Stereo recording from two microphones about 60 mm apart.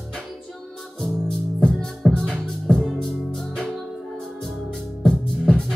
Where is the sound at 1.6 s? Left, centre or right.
Centre.